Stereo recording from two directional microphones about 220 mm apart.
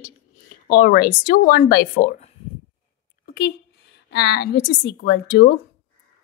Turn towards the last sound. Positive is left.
turn(degrees=50)  # may be behind; listen again after turning